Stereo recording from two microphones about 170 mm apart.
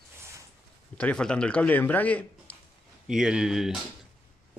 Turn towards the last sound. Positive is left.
turn(degrees=-5)  # may be behind; listen again after turning